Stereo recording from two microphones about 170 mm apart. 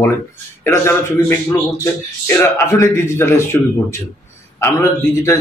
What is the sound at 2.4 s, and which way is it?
Speech, 15° left (ahead or behind).